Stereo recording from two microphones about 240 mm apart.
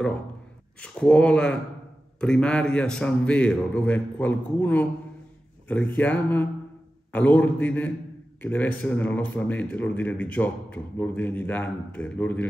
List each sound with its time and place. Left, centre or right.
0.7 s a man's voice: centre